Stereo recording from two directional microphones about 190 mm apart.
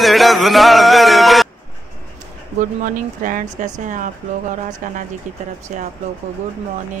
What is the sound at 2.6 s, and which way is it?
Speech, 45° right (ahead or behind).